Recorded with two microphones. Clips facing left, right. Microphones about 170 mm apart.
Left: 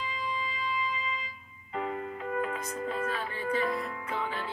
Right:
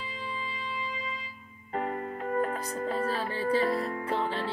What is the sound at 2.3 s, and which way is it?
Music, 35° right (ahead or behind).